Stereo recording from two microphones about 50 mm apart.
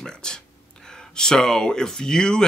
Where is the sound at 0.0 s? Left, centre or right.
Centre.